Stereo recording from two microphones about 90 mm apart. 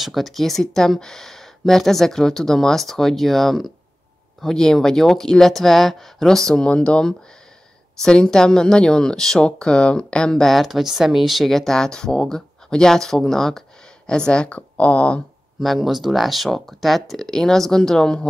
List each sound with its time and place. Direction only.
0.0 s speech: centre (ahead or behind)
15.6 s speech: centre (ahead or behind)